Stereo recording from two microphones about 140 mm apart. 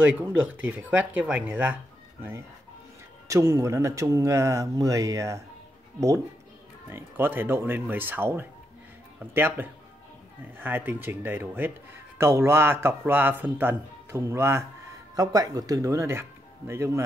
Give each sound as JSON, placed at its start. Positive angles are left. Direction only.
{"t": 0.0, "sound": "speech", "side_deg": -10}
{"t": 3.3, "sound": "speech", "side_deg": -20}